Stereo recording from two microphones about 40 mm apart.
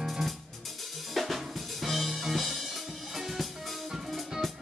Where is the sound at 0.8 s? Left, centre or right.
Centre.